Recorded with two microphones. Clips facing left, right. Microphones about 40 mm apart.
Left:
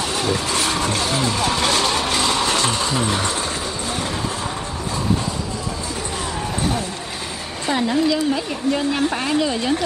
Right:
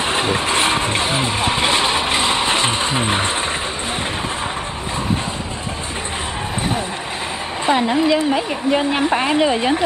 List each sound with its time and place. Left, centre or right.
0.0 s speech: right
7.6 s a woman's voice: right